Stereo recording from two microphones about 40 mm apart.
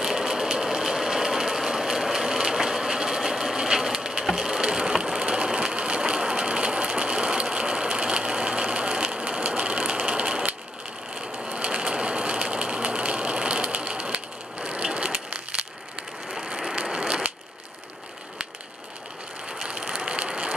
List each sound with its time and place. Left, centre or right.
0.0 s sewing machine: centre
15.3 s crushing: right
16.8 s ratchet: right
19.6 s vehicle: right